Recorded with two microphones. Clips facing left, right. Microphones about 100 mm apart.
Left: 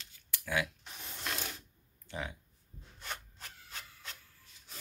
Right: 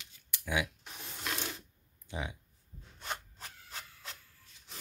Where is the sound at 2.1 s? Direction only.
15° right (ahead or behind).